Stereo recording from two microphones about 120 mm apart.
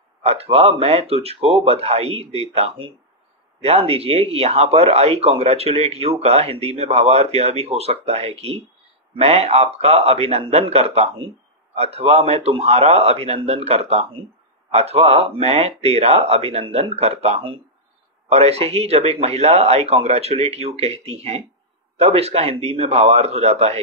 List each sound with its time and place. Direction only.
0.2 s speech: 60° right (ahead or behind)